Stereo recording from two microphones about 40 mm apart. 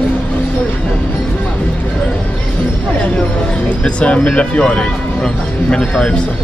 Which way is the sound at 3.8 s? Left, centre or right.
Left.